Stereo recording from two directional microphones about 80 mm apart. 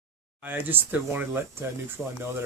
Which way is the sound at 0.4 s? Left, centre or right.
Right.